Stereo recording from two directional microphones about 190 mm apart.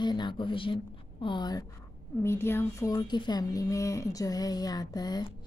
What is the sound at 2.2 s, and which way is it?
A woman's voice, 10° left (ahead or behind).